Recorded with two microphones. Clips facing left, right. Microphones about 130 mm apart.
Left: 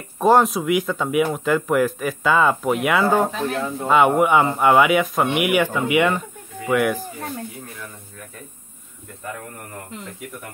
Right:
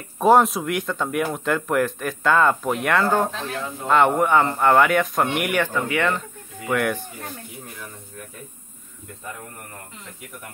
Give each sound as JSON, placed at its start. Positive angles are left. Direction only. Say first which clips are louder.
{"t": 0.2, "sound": "speech", "louder": "even", "side_deg": 0}
{"t": 6.7, "sound": "speech", "louder": "left 3 dB", "side_deg": 0}